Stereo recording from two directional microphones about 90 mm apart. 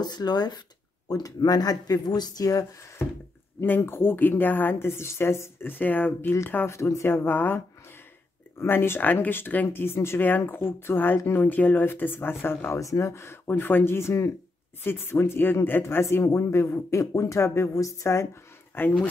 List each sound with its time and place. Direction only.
0.0 s speech: 50° left (ahead or behind)
3.6 s a woman's voice: 25° left (ahead or behind)